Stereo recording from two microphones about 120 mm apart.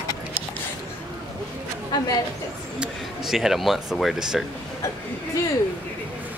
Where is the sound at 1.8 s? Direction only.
35° left (ahead or behind).